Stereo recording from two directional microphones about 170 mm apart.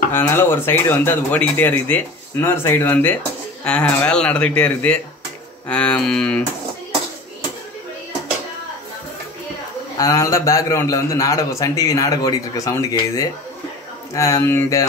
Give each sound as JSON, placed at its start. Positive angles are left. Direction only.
{"t": 0.1, "sound": "speech", "side_deg": 10}
{"t": 9.9, "sound": "a man's voice", "side_deg": 20}